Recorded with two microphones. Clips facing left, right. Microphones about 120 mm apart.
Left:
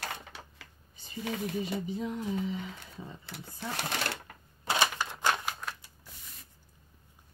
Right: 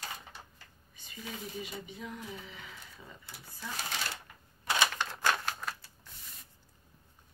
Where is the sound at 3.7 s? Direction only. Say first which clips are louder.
Left 4 dB; 65° left (ahead or behind).